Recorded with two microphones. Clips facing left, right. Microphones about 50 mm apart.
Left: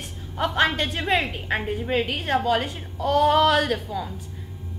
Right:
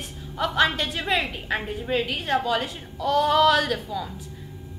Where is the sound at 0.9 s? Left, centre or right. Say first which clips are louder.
Left 2 dB; centre.